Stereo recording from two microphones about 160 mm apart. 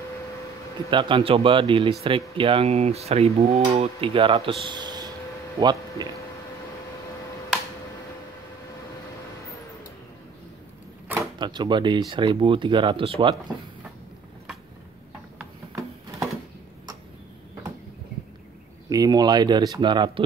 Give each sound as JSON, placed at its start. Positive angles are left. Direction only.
{"t": 0.8, "sound": "cutlery", "side_deg": -30}
{"t": 5.6, "sound": "speech", "side_deg": -25}
{"t": 11.3, "sound": "speech", "side_deg": -30}
{"t": 12.1, "sound": "cutlery", "side_deg": -30}
{"t": 18.9, "sound": "speech", "side_deg": -25}